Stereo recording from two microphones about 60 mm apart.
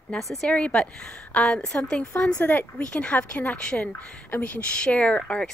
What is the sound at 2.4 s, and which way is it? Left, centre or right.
Speech, left.